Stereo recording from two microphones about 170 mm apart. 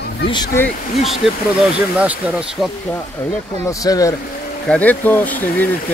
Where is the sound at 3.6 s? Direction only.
20° left (ahead or behind).